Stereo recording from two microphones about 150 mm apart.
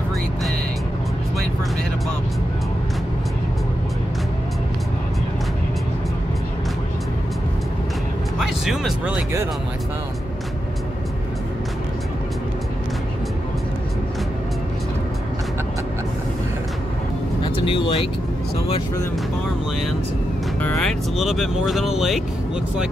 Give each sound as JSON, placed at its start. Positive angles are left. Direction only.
{"t": 8.4, "sound": "music", "side_deg": 0}
{"t": 17.4, "sound": "vehicle", "side_deg": 35}
{"t": 20.6, "sound": "speech", "side_deg": 0}